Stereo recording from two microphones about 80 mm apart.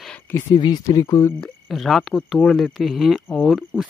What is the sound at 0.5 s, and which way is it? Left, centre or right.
Speech, left.